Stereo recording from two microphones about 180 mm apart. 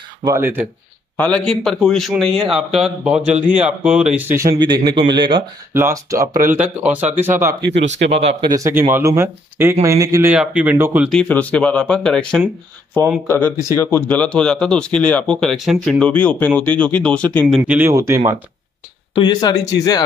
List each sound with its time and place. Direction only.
0.2 s a man's voice: 15° right (ahead or behind)
1.1 s a man's voice: 5° left (ahead or behind); by 5.4 s 25° right (ahead or behind)
5.7 s a man's voice: 15° right (ahead or behind)
7.7 s speech: 75° right (ahead or behind)
8.1 s speech: 35° right (ahead or behind)
8.5 s a man's voice: 15° right (ahead or behind)
10.3 s a man's voice: 5° right (ahead or behind)
11.1 s speech: 5° left (ahead or behind)
13.7 s speech: 15° left (ahead or behind)
17.6 s a man's voice: 10° right (ahead or behind)
19.1 s speech: 25° left (ahead or behind)